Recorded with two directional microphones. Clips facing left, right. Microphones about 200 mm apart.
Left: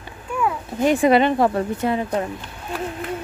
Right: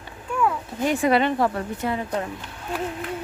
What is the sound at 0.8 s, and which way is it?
Speech, 20° left (ahead or behind).